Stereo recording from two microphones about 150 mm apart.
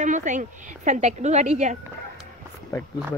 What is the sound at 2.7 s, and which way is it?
Speech, 20° left (ahead or behind).